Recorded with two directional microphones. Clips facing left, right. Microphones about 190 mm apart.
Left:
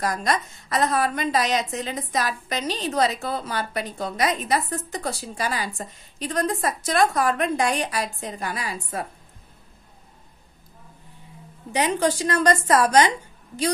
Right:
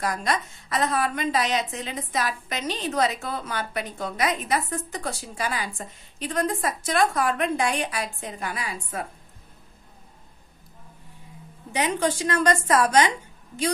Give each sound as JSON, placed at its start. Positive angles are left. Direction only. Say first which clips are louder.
{"t": 0.0, "sound": "a woman's voice", "louder": "left 2 dB", "side_deg": 40}
{"t": 11.7, "sound": "a woman's voice", "louder": "left 2 dB", "side_deg": 35}